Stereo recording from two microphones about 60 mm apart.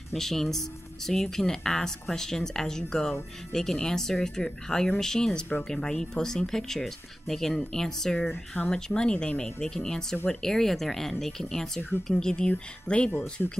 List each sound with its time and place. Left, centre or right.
0.1 s speech: centre; by 13.5 s left